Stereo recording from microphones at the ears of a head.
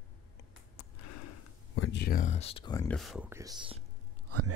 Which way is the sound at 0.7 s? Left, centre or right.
Left.